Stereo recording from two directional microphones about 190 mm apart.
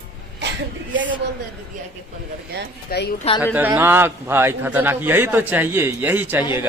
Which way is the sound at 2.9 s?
55° left (ahead or behind).